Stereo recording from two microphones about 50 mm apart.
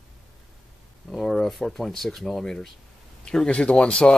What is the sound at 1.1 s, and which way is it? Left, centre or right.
Speech, centre.